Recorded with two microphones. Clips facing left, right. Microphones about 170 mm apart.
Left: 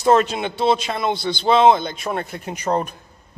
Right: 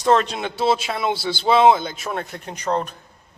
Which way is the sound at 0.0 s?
10° left (ahead or behind).